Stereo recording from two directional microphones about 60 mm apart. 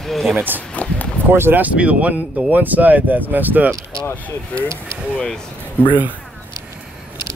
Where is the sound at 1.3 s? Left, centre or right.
Right.